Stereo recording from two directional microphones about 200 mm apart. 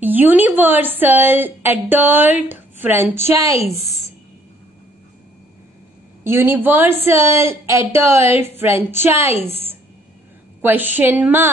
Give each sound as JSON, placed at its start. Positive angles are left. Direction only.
{"t": 0.0, "sound": "a woman's voice", "side_deg": -10}
{"t": 6.2, "sound": "a woman's voice", "side_deg": -10}
{"t": 10.6, "sound": "a woman's voice", "side_deg": -10}